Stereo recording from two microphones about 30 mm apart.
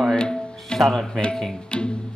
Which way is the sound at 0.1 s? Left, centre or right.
Left.